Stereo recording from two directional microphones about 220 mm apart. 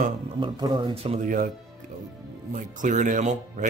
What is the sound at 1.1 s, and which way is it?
Speech, 40° right (ahead or behind).